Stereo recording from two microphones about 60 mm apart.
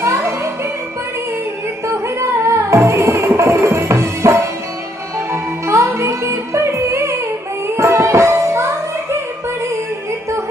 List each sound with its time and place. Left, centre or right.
0.0 s music: right
1.9 s music: right